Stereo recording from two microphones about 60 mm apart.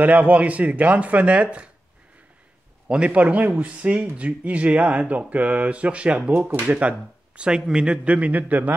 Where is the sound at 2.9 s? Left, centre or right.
Centre.